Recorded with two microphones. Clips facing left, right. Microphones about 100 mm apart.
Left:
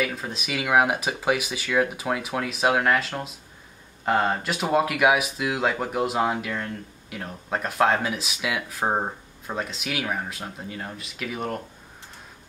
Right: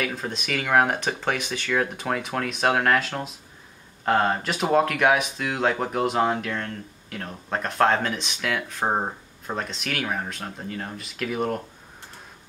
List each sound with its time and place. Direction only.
0.0 s speech: centre (ahead or behind)